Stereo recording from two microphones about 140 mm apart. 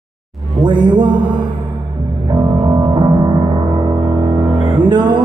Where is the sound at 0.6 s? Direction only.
35° right (ahead or behind).